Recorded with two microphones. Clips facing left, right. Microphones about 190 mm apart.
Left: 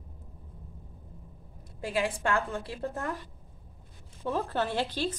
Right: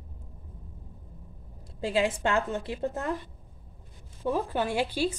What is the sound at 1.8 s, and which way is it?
A woman's voice, 25° right (ahead or behind).